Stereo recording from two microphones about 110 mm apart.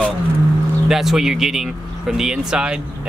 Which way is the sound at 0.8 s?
5° right (ahead or behind).